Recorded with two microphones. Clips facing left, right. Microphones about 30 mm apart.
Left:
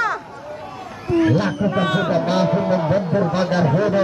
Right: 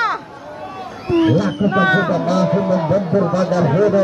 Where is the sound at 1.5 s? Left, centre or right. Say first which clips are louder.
Right 4 dB; right.